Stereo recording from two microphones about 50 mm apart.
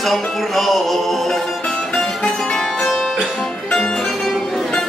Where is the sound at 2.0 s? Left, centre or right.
Centre.